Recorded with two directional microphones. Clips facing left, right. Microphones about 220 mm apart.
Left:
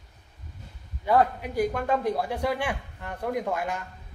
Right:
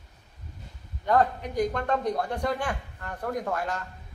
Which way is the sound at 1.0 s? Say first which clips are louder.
Left 1 dB; 5° left (ahead or behind).